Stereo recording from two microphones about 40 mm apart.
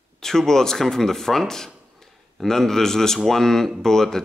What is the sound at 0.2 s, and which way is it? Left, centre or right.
Speech, centre.